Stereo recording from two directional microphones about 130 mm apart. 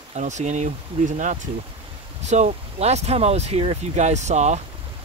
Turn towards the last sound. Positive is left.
turn(degrees=-65)  # may be behind; listen again after turning